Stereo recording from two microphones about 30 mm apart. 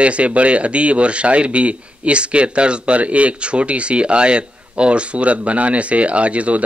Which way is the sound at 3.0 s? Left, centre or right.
Right.